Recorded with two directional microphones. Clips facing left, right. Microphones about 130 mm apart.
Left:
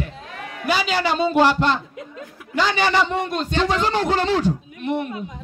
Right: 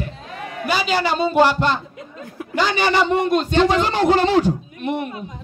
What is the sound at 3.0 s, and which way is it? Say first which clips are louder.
Speech: right 4 dB; 10° right (ahead or behind).